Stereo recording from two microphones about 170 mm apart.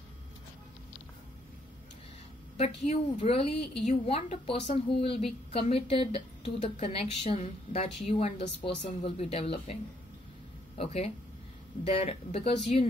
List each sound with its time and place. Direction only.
2.5 s a woman's voice: 40° left (ahead or behind)
10.8 s a woman's voice: 35° left (ahead or behind)